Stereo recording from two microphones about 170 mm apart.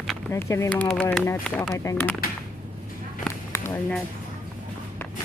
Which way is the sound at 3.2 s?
15° left (ahead or behind).